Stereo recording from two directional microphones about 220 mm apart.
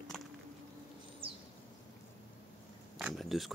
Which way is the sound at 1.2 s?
25° right (ahead or behind).